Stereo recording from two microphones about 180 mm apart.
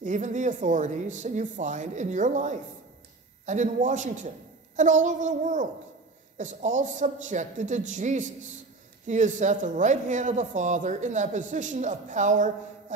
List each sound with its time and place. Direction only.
0.0 s a man's voice: 45° right (ahead or behind)